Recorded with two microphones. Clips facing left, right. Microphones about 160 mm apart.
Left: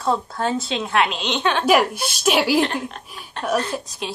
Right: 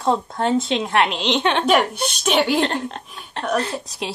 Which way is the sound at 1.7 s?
5° left (ahead or behind).